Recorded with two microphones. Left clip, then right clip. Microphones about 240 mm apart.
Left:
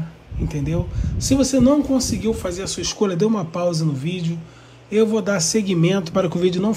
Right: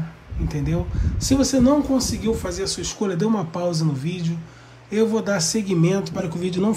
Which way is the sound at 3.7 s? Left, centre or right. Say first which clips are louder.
Left 2 dB; centre.